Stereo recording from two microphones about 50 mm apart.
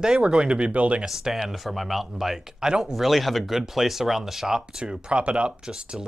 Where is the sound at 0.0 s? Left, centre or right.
Centre.